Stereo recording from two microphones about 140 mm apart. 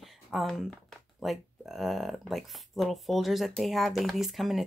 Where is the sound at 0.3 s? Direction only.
Centre (ahead or behind).